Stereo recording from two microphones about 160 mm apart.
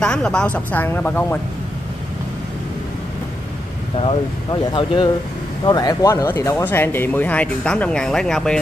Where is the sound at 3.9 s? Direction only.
35° left (ahead or behind); by 8.5 s 5° left (ahead or behind).